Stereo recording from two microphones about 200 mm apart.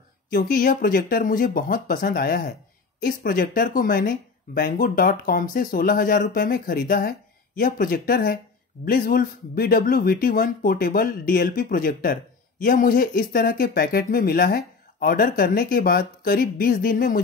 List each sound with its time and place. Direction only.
0.3 s speech: 45° left (ahead or behind)